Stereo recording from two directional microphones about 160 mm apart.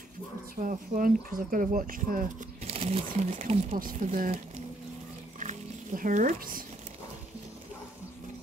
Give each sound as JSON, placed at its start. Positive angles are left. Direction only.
{"t": 0.6, "sound": "speech", "side_deg": -55}
{"t": 2.6, "sound": "crumpling", "side_deg": -40}
{"t": 3.1, "sound": "speech", "side_deg": -45}
{"t": 3.8, "sound": "speech", "side_deg": -55}
{"t": 5.4, "sound": "music", "side_deg": -50}